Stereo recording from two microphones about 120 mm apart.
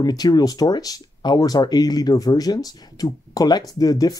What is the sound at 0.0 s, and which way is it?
Speech, 35° left (ahead or behind).